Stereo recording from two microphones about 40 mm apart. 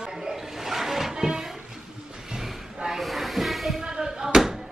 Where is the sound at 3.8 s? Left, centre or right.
Centre.